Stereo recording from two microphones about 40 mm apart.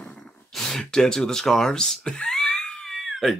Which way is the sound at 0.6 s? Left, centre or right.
Centre.